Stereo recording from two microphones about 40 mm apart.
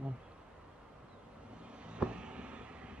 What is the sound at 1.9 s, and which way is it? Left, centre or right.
Vehicle, right.